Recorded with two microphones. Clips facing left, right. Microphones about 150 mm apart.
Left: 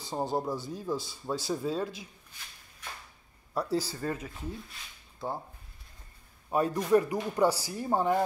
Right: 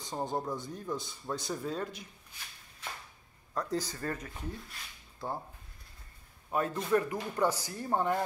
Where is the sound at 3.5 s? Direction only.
10° left (ahead or behind).